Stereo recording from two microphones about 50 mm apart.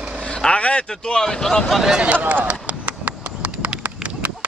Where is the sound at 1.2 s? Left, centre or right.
Centre.